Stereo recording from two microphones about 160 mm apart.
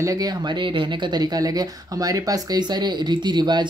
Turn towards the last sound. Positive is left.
turn(degrees=-25)  # may be behind; listen again after turning